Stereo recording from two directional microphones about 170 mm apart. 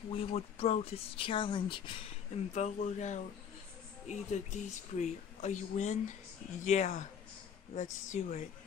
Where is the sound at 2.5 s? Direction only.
45° left (ahead or behind).